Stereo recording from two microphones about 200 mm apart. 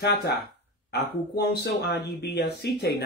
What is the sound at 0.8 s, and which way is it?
Speech, 55° left (ahead or behind).